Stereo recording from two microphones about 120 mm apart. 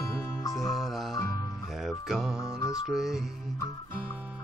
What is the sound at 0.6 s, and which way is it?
Music, centre (ahead or behind).